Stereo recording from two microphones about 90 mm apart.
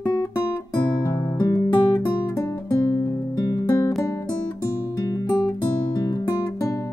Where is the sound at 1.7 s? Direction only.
45° left (ahead or behind).